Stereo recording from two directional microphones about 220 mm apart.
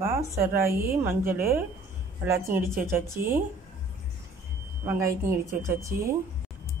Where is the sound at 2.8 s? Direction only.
10° right (ahead or behind).